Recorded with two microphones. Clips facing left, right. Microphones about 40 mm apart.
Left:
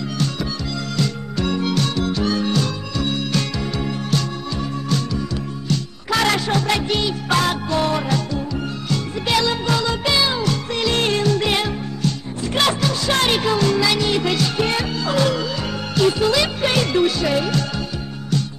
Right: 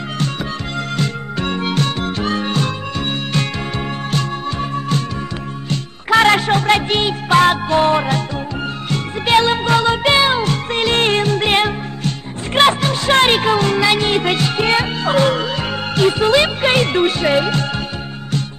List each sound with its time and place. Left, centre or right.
0.9 s music: right
5.7 s music: right